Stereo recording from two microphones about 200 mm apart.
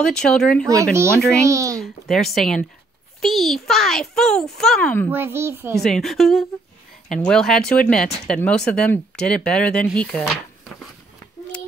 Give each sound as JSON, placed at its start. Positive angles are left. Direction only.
{"t": 0.0, "sound": "speech", "side_deg": 5}
{"t": 1.4, "sound": "speech", "side_deg": -15}
{"t": 1.8, "sound": "speech", "side_deg": 0}
{"t": 5.1, "sound": "speech", "side_deg": -10}
{"t": 5.8, "sound": "speech", "side_deg": 0}